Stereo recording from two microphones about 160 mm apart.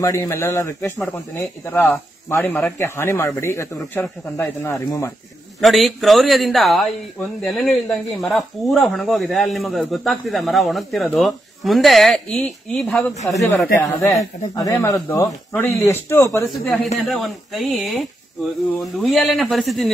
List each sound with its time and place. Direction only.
0.0 s speech: 20° left (ahead or behind)
5.6 s speech: centre (ahead or behind)
13.7 s speech: 15° left (ahead or behind)
16.6 s speech: 5° left (ahead or behind)